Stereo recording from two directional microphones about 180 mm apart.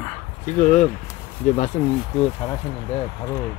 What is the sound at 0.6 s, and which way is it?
Speech, 40° left (ahead or behind).